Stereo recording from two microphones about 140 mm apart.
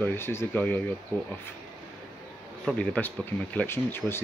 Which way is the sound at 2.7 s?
10° left (ahead or behind).